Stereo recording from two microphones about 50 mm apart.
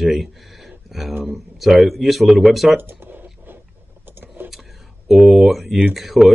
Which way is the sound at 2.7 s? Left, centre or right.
Right.